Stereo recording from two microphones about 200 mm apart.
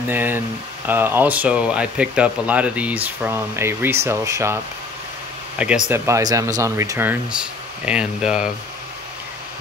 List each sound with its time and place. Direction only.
0.1 s speech: 10° right (ahead or behind)
5.9 s speech: 15° right (ahead or behind)